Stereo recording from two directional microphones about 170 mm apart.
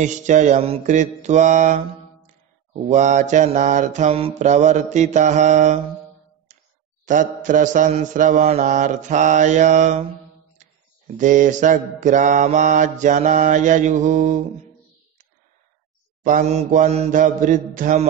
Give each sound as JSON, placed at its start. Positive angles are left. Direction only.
{"t": 0.0, "sound": "mantra", "side_deg": -45}
{"t": 7.1, "sound": "mantra", "side_deg": -50}
{"t": 11.1, "sound": "mantra", "side_deg": -50}
{"t": 16.3, "sound": "mantra", "side_deg": -45}